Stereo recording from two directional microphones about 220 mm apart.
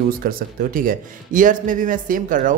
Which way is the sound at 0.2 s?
40° right (ahead or behind).